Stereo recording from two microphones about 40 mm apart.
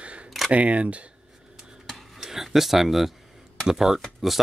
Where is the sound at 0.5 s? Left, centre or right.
Right.